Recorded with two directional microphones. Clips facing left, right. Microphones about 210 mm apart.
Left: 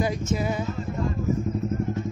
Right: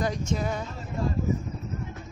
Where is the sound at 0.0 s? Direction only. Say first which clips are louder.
Left 3 dB; 5° left (ahead or behind).